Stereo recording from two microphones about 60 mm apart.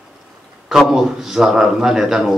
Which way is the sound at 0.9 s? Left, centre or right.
Centre.